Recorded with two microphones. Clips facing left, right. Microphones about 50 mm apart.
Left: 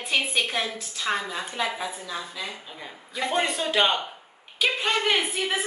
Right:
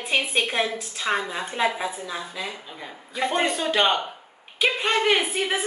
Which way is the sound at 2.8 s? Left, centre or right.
Centre.